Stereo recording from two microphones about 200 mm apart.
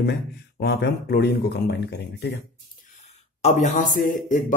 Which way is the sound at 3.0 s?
35° left (ahead or behind).